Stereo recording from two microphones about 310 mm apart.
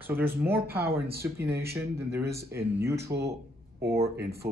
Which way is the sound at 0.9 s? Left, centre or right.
Right.